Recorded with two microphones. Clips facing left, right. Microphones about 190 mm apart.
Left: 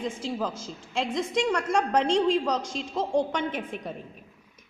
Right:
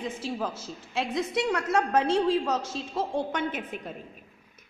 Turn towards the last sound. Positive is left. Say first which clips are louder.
# left 1 dB
turn(degrees=-5)  # may be behind; listen again after turning